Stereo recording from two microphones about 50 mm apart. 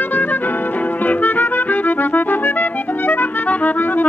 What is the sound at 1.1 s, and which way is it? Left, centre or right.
Music, left.